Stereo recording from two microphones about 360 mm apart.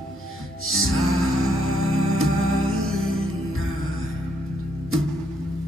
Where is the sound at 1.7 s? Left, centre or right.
Right.